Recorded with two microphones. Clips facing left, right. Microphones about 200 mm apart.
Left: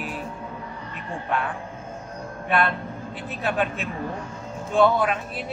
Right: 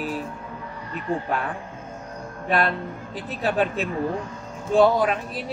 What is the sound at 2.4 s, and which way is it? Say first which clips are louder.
A man's voice: right 1 dB; 35° right (ahead or behind).